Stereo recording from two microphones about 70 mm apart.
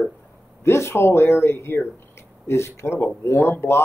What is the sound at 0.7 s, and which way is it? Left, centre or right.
A man's voice, left.